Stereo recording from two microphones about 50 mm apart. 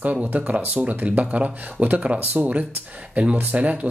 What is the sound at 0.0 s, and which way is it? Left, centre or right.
Speech, right.